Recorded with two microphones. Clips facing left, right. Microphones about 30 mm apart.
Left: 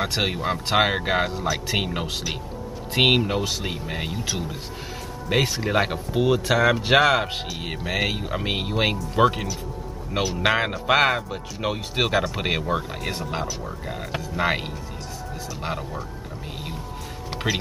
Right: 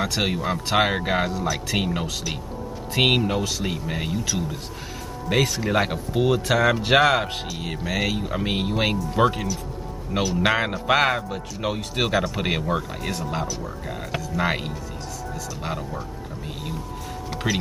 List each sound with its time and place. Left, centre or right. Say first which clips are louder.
0.0 s speech: even; centre
3.1 s speech: left 1 dB; centre
8.2 s speech: right 1 dB; centre